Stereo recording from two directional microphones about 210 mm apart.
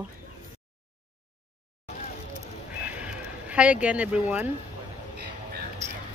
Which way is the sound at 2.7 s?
5° right (ahead or behind).